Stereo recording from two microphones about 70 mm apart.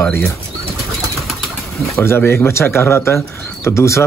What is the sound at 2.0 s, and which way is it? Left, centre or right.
Speech, left.